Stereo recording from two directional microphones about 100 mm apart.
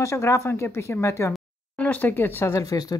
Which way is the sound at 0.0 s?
30° left (ahead or behind).